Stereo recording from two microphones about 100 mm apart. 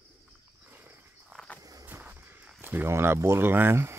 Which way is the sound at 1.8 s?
20° right (ahead or behind).